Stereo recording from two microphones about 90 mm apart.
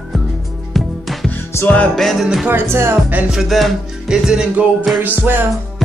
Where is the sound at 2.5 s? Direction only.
25° right (ahead or behind).